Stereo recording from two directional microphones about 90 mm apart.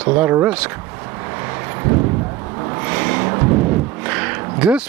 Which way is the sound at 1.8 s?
25° right (ahead or behind).